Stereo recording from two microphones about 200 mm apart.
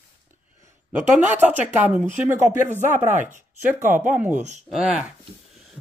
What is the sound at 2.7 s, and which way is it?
Speech, 35° right (ahead or behind).